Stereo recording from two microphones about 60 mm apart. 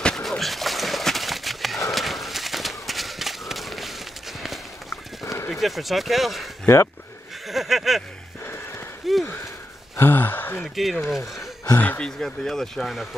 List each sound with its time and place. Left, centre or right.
0.1 s a sound: centre
1.9 s horse: centre
4.8 s horse: left
5.5 s speech: centre
6.6 s speech: left
7.4 s speech: centre
9.0 s speech: centre
9.9 s gasp: left
10.8 s speech: centre